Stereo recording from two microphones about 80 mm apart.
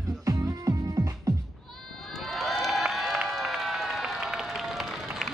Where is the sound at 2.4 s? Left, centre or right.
Centre.